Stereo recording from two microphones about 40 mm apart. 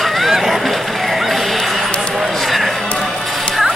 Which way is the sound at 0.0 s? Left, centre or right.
Centre.